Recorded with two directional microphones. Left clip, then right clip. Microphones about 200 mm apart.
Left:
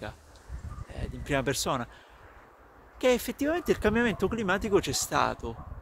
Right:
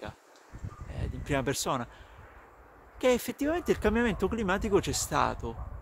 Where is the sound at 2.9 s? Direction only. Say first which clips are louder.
Left 1 dB; centre (ahead or behind).